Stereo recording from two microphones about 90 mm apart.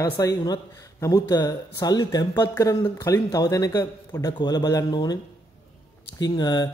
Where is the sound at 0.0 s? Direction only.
40° left (ahead or behind).